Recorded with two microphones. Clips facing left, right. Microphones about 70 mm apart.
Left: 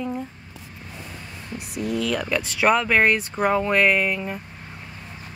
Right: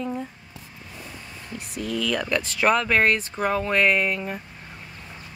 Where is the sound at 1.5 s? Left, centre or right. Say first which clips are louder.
Left 2 dB; left.